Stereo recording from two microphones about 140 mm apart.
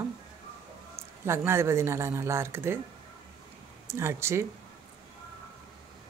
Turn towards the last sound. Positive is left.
turn(degrees=-20)  # may be behind; listen again after turning